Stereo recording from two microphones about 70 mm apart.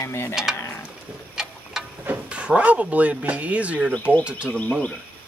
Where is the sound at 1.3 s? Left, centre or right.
Centre.